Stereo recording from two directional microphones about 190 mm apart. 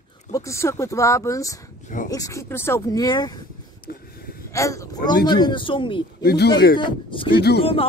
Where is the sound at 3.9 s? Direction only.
55° left (ahead or behind).